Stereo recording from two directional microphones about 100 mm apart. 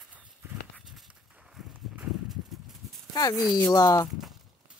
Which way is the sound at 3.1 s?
40° left (ahead or behind).